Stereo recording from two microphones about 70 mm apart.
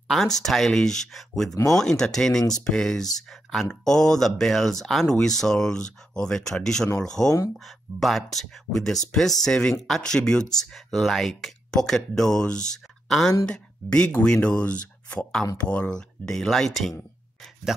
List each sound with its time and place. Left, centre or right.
0.1 s speech: centre
17.7 s speech: centre